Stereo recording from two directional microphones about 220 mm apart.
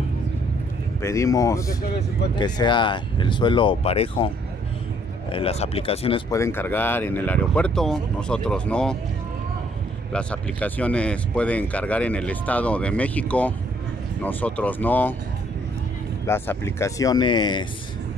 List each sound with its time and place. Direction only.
1.0 s speech: 15° left (ahead or behind)
5.3 s speech: 25° left (ahead or behind)
6.3 s speech: 10° left (ahead or behind)
10.1 s speech: 5° left (ahead or behind)
16.3 s speech: 10° left (ahead or behind)